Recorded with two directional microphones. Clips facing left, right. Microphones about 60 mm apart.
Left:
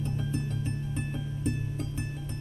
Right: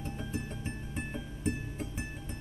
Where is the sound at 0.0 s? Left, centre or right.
Centre.